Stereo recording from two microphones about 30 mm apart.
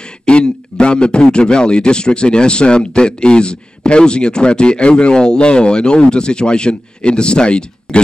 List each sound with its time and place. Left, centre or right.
0.2 s a man's voice: left